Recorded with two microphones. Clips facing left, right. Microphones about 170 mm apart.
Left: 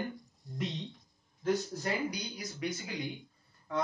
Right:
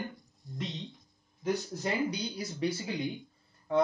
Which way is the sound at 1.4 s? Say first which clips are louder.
Even; 25° right (ahead or behind).